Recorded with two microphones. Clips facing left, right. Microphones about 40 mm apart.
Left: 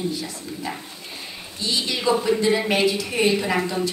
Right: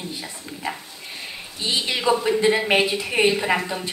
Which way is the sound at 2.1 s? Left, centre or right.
Centre.